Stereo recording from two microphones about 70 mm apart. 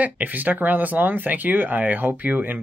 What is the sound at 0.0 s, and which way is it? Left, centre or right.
Speech, right.